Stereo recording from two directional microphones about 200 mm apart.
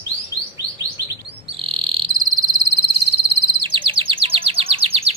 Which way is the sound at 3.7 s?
25° right (ahead or behind).